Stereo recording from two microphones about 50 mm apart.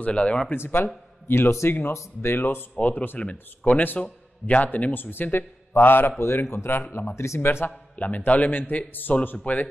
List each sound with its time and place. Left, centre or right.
0.0 s speech: left
0.6 s a man's voice: left
2.7 s a man's voice: left
4.9 s a man's voice: left
6.1 s a man's voice: left
6.7 s a man's voice: left
7.9 s a man's voice: left